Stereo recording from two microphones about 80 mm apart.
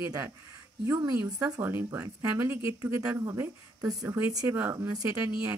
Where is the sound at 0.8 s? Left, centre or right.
Right.